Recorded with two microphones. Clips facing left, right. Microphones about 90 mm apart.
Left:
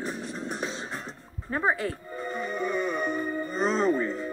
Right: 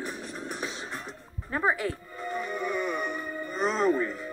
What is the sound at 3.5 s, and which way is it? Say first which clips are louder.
Music: left 1 dB; 20° left (ahead or behind).